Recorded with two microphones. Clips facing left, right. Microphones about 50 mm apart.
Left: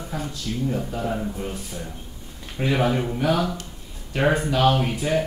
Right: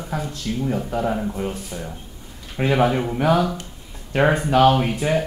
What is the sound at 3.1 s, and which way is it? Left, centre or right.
Speech, right.